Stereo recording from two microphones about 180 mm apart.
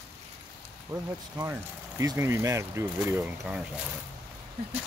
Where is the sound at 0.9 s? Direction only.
15° right (ahead or behind).